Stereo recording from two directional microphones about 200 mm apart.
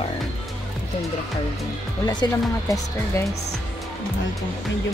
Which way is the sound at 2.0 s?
20° left (ahead or behind).